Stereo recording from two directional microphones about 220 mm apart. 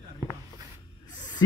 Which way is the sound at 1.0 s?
20° left (ahead or behind).